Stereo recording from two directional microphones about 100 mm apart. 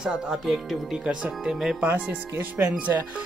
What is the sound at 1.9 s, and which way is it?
Speech, 20° right (ahead or behind).